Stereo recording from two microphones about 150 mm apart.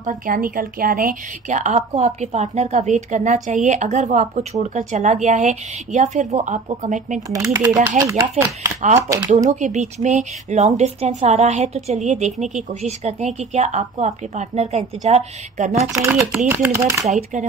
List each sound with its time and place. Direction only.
0.0 s speech: 70° right (ahead or behind); by 7.2 s 55° right (ahead or behind)
7.2 s speech: 20° right (ahead or behind)
8.8 s speech: 50° right (ahead or behind)
16.4 s speech: 15° right (ahead or behind)
17.0 s speech: 55° right (ahead or behind)